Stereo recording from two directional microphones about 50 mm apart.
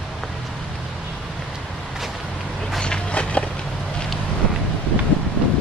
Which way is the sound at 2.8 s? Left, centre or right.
Centre.